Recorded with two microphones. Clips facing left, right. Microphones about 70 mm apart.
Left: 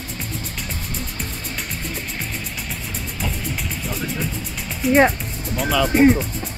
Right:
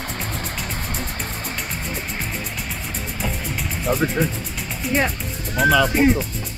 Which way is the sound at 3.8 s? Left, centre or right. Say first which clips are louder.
Right 11 dB; right.